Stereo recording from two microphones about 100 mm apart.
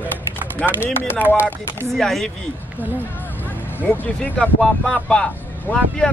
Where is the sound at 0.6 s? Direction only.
20° left (ahead or behind).